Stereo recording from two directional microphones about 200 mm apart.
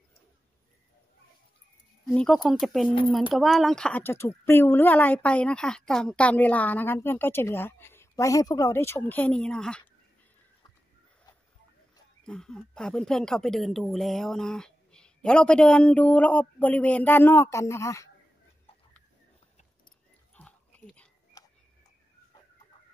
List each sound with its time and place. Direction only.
2.0 s a woman's voice: centre (ahead or behind)
12.3 s speech: 5° left (ahead or behind)
20.3 s dog: 5° left (ahead or behind)
21.4 s a sound: 20° left (ahead or behind)